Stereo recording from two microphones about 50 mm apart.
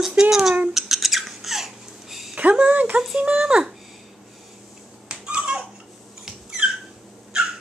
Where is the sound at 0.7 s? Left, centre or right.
Centre.